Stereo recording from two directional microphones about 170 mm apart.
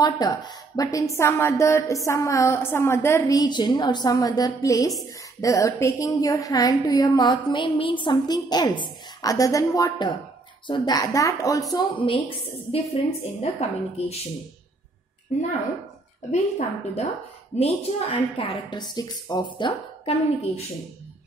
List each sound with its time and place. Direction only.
0.0 s a woman's voice: 25° left (ahead or behind)
13.4 s speech: 35° left (ahead or behind)
16.3 s a woman's voice: 40° left (ahead or behind); by 19.4 s 25° left (ahead or behind)
19.6 s speech: 35° left (ahead or behind)